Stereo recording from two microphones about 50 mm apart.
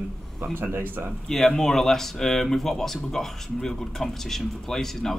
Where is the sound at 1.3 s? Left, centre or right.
Centre.